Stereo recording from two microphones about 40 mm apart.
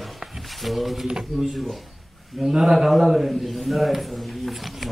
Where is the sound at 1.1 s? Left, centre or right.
Centre.